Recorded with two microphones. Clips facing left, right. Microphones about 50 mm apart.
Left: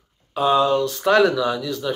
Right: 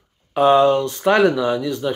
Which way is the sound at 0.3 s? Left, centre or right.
Right.